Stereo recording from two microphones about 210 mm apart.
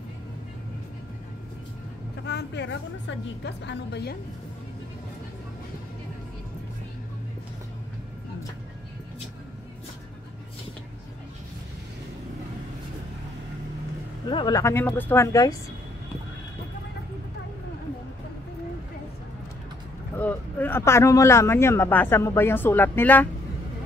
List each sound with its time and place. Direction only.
2.2 s a woman's voice: 55° left (ahead or behind)
14.3 s speech: 20° left (ahead or behind)
20.2 s speech: 10° left (ahead or behind)